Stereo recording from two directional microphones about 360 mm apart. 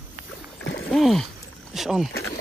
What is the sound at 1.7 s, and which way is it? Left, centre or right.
Speech, centre.